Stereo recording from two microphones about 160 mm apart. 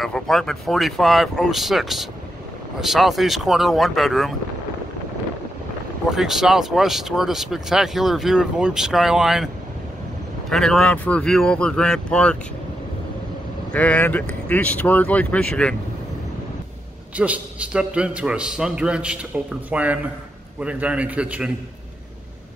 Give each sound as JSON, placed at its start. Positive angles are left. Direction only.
{"t": 0.0, "sound": "speech", "side_deg": 0}
{"t": 6.0, "sound": "speech", "side_deg": 0}
{"t": 10.5, "sound": "speech", "side_deg": 5}
{"t": 13.7, "sound": "speech", "side_deg": 10}
{"t": 17.2, "sound": "a man's voice", "side_deg": -10}